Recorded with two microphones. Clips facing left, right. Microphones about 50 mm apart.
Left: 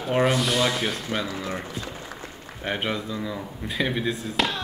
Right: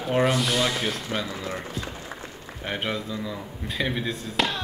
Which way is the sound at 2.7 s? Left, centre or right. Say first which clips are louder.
Left 2 dB; centre.